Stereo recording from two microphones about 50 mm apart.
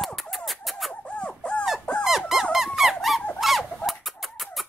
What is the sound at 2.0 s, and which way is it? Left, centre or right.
Squeak, centre.